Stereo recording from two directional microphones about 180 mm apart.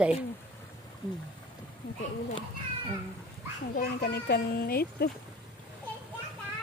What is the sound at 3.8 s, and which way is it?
A child's voice, 60° left (ahead or behind).